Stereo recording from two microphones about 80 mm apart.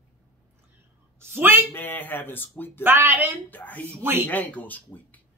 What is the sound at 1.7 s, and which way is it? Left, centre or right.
Speech, left.